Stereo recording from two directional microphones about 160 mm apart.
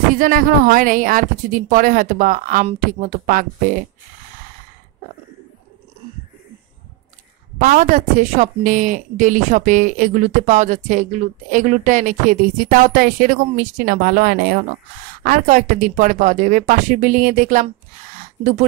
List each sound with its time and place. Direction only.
0.1 s a woman's voice: 55° right (ahead or behind)
7.5 s a woman's voice: 55° right (ahead or behind)
18.1 s a sound: 50° right (ahead or behind)